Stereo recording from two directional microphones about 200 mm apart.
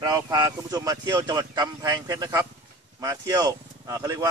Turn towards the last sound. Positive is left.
turn(degrees=-15)  # may be behind; listen again after turning